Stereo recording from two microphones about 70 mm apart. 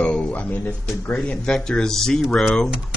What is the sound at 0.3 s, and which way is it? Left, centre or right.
Speech, left.